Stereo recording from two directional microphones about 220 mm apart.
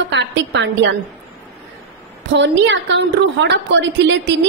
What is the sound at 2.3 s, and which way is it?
A woman's voice, 55° right (ahead or behind).